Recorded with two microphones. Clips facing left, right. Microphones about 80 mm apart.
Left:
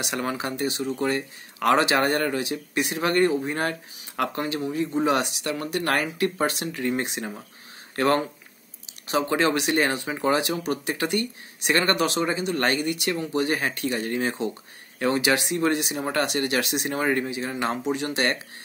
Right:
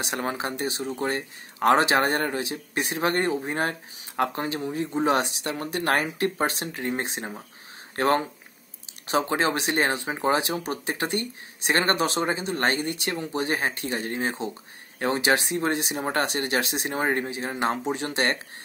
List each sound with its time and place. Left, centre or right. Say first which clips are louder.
0.0 s speech: left 1 dB; right